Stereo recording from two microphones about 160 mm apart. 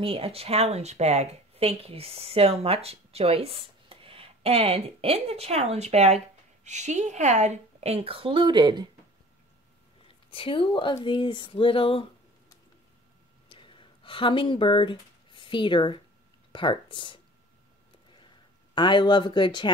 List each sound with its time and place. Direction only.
0.0 s speech: 35° right (ahead or behind)
10.3 s speech: 35° left (ahead or behind)
13.5 s a sound: 30° left (ahead or behind)
16.5 s speech: 30° left (ahead or behind)
18.8 s speech: 30° left (ahead or behind)